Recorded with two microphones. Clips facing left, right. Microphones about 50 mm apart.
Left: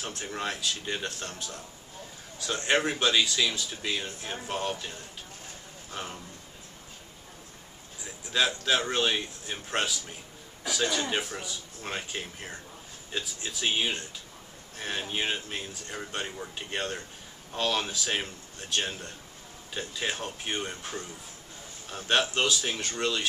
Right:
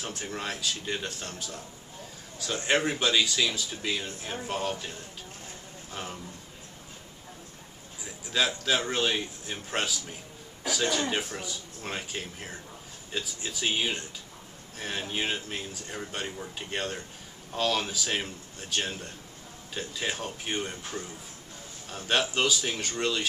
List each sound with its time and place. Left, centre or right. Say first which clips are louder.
0.0 s speech: left 1 dB; centre
8.3 s speech: left 1 dB; centre